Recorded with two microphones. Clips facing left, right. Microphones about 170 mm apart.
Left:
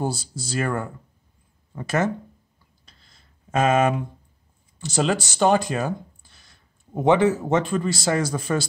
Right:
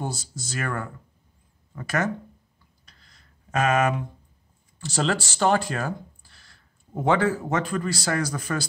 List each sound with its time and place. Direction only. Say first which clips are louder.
0.0 s speech: left 5 dB; 30° left (ahead or behind)
2.8 s a sound: left 1 dB; 25° left (ahead or behind)
4.7 s speech: left 3 dB; 20° left (ahead or behind)